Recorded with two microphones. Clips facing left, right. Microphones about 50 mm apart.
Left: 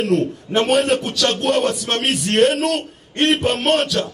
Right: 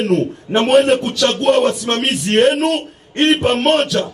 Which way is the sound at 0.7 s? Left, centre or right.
Centre.